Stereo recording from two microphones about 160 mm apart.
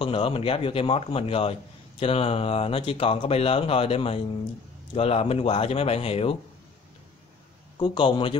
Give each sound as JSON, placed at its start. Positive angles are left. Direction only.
{"t": 0.0, "sound": "a man's voice", "side_deg": 35}
{"t": 7.8, "sound": "a man's voice", "side_deg": 30}